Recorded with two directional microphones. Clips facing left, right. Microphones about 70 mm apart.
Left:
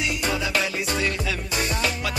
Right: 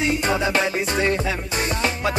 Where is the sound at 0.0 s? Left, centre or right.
Right.